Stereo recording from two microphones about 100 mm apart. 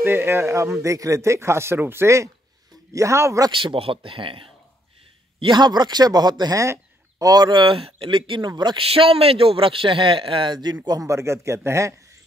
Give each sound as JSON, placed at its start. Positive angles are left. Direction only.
{"t": 0.0, "sound": "a man's voice", "side_deg": -25}
{"t": 3.5, "sound": "a man's voice", "side_deg": -60}
{"t": 5.4, "sound": "speech", "side_deg": -50}
{"t": 6.6, "sound": "speech", "side_deg": -35}
{"t": 8.9, "sound": "a man's voice", "side_deg": -70}
{"t": 10.9, "sound": "a man's voice", "side_deg": -35}